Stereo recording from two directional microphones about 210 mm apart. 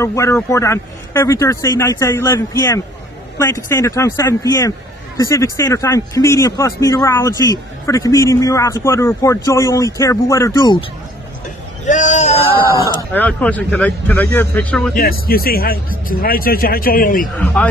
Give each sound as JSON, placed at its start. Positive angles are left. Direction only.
{"t": 0.0, "sound": "speech", "side_deg": 15}
{"t": 11.8, "sound": "a sound", "side_deg": 35}
{"t": 13.1, "sound": "speech", "side_deg": 5}
{"t": 15.0, "sound": "a man's voice", "side_deg": 45}
{"t": 17.6, "sound": "a man's voice", "side_deg": 5}